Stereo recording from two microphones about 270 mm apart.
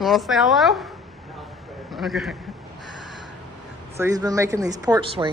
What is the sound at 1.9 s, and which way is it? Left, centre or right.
Speech, centre.